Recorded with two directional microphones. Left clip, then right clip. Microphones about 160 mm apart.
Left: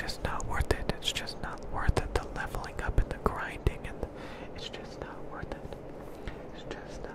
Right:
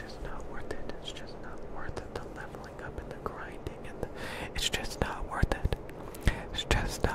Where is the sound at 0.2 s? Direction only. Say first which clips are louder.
Left 7 dB; 40° left (ahead or behind).